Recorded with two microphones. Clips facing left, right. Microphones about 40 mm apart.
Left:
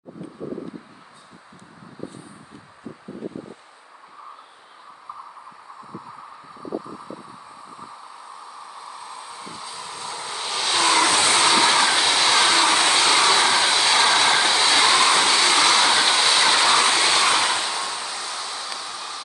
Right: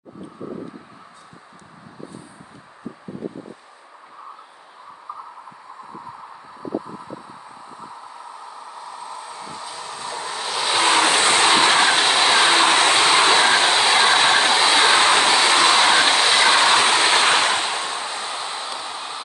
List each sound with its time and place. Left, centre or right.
9.5 s vehicle: centre
10.3 s a sound: centre
10.7 s vehicle: right
11.0 s train: right
12.1 s vehicle: right
13.7 s train: right
15.3 s vehicle: right
16.2 s train: right